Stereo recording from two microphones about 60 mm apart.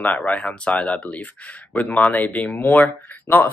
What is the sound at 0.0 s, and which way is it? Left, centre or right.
Speech, left.